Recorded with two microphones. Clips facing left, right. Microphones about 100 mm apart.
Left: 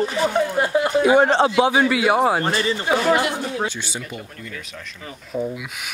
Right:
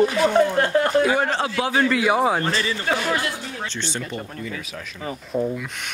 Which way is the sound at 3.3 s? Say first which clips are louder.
Left 7 dB; 55° left (ahead or behind).